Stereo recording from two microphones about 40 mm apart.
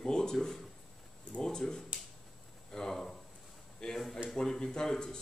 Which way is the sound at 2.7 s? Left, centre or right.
Centre.